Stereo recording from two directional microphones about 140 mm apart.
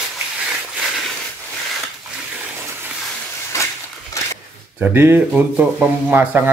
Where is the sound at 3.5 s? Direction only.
20° left (ahead or behind).